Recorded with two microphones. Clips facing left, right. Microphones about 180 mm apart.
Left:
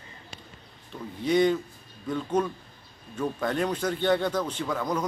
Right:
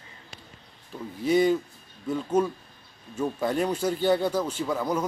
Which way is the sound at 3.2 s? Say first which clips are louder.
Right 1 dB; 10° right (ahead or behind).